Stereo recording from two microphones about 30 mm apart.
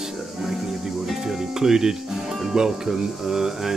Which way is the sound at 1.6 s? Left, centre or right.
Right.